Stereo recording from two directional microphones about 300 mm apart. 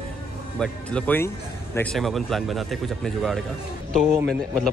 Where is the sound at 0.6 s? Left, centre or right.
Centre.